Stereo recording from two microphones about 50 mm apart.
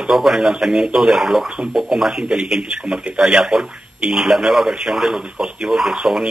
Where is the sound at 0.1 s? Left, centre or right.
Centre.